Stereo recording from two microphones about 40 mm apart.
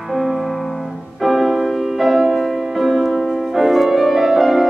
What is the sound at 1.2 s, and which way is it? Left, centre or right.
Music, centre.